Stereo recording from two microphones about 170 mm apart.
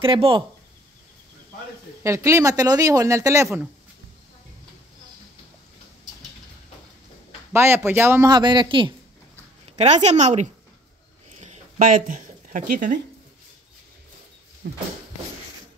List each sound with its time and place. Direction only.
0.0 s speech: 30° right (ahead or behind)
2.0 s speech: 15° right (ahead or behind)
7.5 s speech: 15° right (ahead or behind)
8.3 s a man's voice: 25° right (ahead or behind)
9.7 s a sound: 40° right (ahead or behind)
10.0 s a woman's voice: 45° right (ahead or behind)
11.4 s a sound: 45° right (ahead or behind)
14.6 s speech: 90° right